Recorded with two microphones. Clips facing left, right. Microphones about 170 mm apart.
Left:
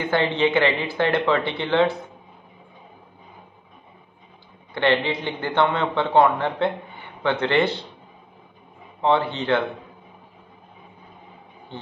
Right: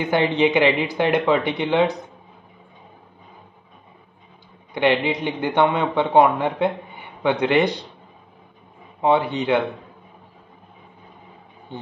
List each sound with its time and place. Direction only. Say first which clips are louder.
0.0 s a man's voice: right 2 dB; 15° right (ahead or behind)
4.7 s a man's voice: right 2 dB; 15° right (ahead or behind)
9.0 s a man's voice: right 2 dB; 15° right (ahead or behind)